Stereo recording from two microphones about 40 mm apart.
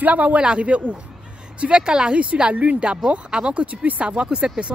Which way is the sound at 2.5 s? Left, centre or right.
Right.